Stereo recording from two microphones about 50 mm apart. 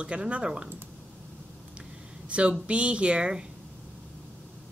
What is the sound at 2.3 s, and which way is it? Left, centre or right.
Speech, right.